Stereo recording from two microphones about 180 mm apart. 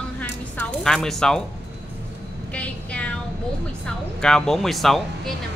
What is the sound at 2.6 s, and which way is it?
Child singing, 5° left (ahead or behind).